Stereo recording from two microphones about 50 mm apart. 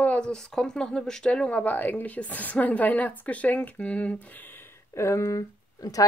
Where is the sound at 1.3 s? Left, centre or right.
Left.